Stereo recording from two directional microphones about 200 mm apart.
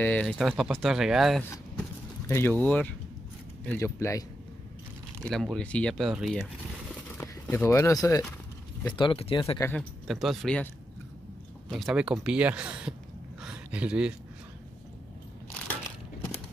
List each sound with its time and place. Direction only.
0.0 s speech: 5° left (ahead or behind)
2.2 s speech: 10° left (ahead or behind)
5.2 s speech: centre (ahead or behind)
7.2 s speech: 10° left (ahead or behind)
9.8 s speech: centre (ahead or behind)
11.7 s speech: 5° right (ahead or behind)
13.4 s a sound: 5° right (ahead or behind)